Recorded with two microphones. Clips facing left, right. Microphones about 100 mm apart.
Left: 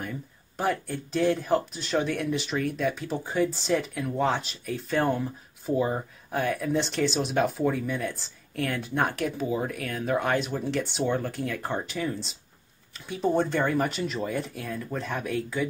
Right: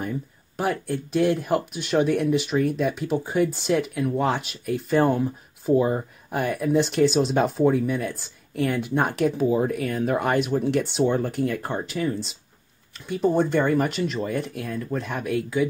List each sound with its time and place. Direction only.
0.6 s speech: 5° right (ahead or behind)